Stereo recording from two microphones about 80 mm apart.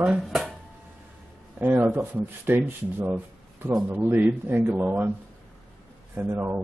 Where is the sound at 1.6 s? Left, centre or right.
Right.